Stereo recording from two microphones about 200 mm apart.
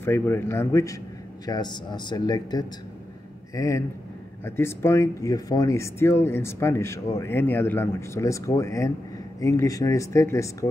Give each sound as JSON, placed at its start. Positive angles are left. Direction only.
{"t": 0.0, "sound": "speech", "side_deg": 10}